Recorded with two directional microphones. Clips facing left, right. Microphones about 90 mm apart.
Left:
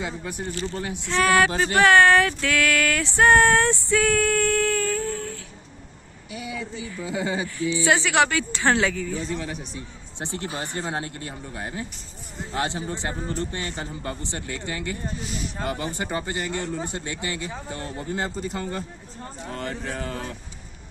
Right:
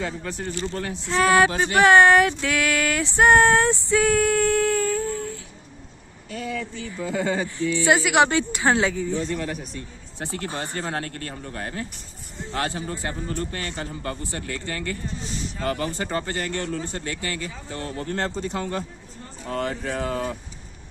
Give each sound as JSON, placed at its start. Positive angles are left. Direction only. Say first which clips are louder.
{"t": 0.0, "sound": "speech", "louder": "right 1 dB", "side_deg": 15}
{"t": 1.0, "sound": "speech", "louder": "right 2 dB", "side_deg": -20}
{"t": 3.2, "sound": "child singing", "louder": "right 1 dB", "side_deg": -20}
{"t": 6.3, "sound": "speech", "louder": "right 3 dB", "side_deg": 10}
{"t": 7.8, "sound": "speech", "louder": "right 2 dB", "side_deg": -15}
{"t": 9.2, "sound": "speech", "louder": "right 2 dB", "side_deg": 0}
{"t": 10.1, "sound": "speech", "louder": "right 1 dB", "side_deg": 20}